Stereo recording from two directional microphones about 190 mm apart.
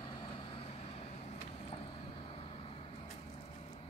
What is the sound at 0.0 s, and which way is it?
Vehicle, 25° left (ahead or behind).